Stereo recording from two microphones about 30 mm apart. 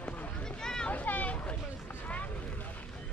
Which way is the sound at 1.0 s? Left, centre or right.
Left.